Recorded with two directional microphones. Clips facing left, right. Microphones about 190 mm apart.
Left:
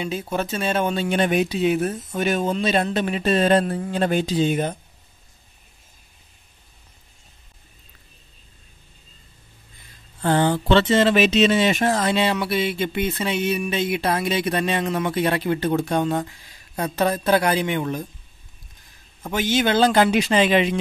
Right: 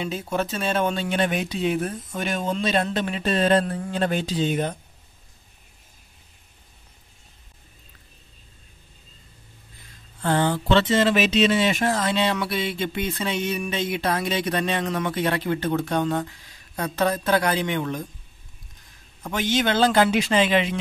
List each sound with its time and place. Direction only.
0.0 s speech: 5° left (ahead or behind)
10.2 s speech: 20° left (ahead or behind)
19.2 s speech: 5° left (ahead or behind)